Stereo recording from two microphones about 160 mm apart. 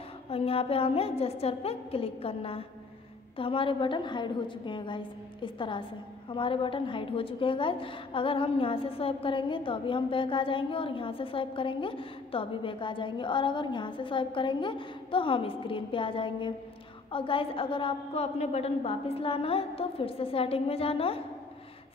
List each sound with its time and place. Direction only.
0.3 s a woman's voice: 35° left (ahead or behind)